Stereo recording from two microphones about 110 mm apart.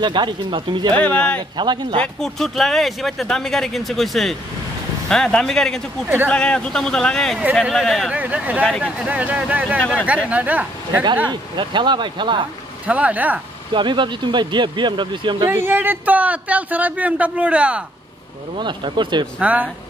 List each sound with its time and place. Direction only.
0.0 s speech: 45° right (ahead or behind)
0.9 s speech: 10° left (ahead or behind)
1.6 s speech: 45° right (ahead or behind)
2.0 s speech: 5° left (ahead or behind)
8.1 s a man's voice: 10° right (ahead or behind)
9.8 s speech: 10° left (ahead or behind)
10.0 s a man's voice: 15° right (ahead or behind)
11.2 s speech: 45° right (ahead or behind)
12.8 s a man's voice: 15° right (ahead or behind)
13.7 s speech: 45° right (ahead or behind)
15.4 s a man's voice: 20° right (ahead or behind)
18.6 s speech: 45° right (ahead or behind)
19.4 s a man's voice: 15° right (ahead or behind)